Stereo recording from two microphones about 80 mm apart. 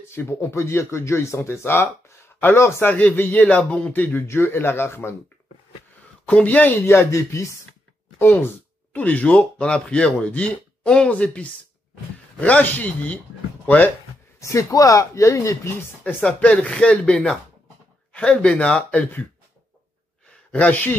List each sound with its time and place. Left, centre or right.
0.1 s speech: left
2.9 s a man's voice: left
6.2 s a man's voice: centre
6.9 s speech: left
8.2 s a man's voice: left
14.4 s speech: left
16.0 s speech: centre
20.5 s a man's voice: centre